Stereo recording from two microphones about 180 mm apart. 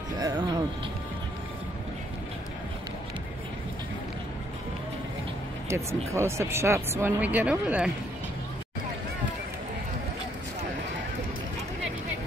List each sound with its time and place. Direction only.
0.2 s music: 25° right (ahead or behind)
5.9 s speech: 15° right (ahead or behind)